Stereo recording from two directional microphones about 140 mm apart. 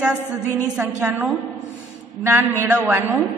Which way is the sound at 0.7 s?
5° right (ahead or behind).